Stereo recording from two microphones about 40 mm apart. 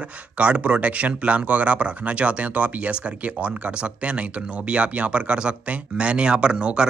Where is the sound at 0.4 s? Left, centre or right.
Right.